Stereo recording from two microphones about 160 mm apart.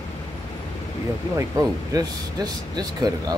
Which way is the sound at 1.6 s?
20° right (ahead or behind).